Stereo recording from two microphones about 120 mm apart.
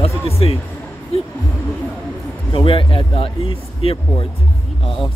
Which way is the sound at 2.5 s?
45° left (ahead or behind).